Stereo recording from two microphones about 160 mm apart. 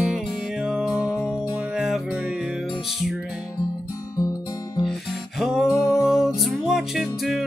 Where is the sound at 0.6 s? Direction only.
5° right (ahead or behind).